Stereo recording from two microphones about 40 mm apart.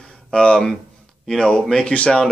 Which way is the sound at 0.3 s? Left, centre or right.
Left.